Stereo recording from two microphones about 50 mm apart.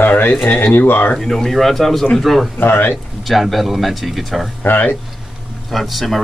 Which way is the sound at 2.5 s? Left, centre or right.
Left.